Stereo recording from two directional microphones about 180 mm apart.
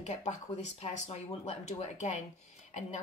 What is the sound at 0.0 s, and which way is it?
Speech, 40° left (ahead or behind).